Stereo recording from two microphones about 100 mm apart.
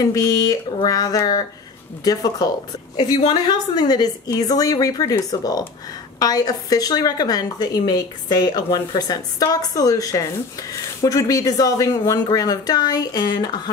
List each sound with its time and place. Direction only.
0.0 s speech: 35° left (ahead or behind)